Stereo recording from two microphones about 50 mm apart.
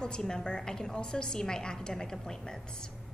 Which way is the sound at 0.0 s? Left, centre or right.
Centre.